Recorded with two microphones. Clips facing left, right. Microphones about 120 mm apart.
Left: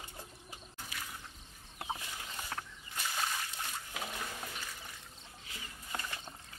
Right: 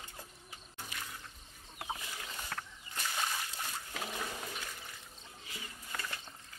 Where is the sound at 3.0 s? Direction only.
Centre (ahead or behind).